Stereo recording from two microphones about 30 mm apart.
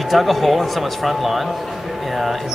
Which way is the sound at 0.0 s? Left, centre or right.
Centre.